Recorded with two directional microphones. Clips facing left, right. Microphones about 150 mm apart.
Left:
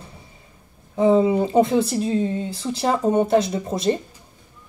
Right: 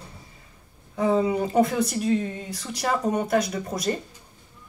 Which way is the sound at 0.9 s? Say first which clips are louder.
Left 6 dB; 25° left (ahead or behind).